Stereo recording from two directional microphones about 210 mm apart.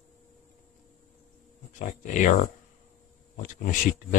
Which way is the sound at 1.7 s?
40° left (ahead or behind).